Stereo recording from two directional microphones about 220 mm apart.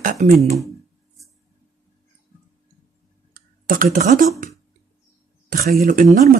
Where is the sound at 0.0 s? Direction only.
35° right (ahead or behind).